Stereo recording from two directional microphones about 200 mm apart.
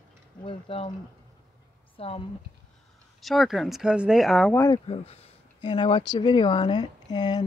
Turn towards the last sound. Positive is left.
turn(degrees=20)  # may be behind; listen again after turning